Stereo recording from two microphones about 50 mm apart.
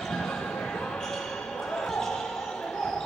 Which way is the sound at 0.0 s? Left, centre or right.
Centre.